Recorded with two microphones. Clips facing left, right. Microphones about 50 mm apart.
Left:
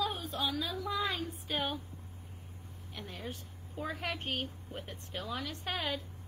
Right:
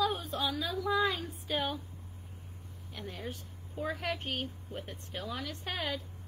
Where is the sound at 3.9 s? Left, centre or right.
Left.